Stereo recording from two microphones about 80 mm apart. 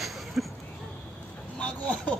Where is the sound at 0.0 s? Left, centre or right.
Centre.